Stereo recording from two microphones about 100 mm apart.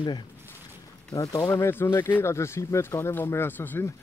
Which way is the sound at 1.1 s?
40° left (ahead or behind).